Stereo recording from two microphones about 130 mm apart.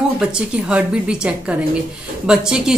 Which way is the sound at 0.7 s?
10° right (ahead or behind).